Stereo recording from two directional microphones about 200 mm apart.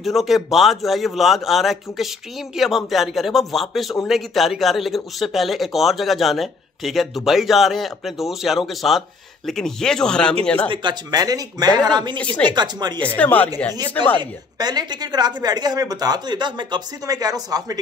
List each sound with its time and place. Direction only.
0.0 s speech: centre (ahead or behind)
10.7 s speech: 25° right (ahead or behind)
13.0 s speech: 5° left (ahead or behind)
14.6 s speech: 20° right (ahead or behind)